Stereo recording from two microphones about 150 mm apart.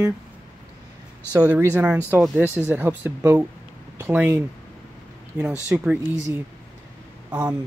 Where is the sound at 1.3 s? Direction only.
10° right (ahead or behind).